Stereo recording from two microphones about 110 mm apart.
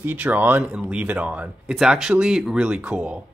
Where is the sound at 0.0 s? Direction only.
15° right (ahead or behind).